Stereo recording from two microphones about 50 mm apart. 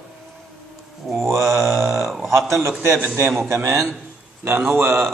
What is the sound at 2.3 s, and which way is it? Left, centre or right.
Speech, right.